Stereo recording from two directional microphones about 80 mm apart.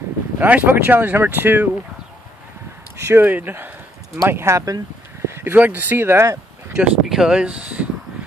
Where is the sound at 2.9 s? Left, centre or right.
Right.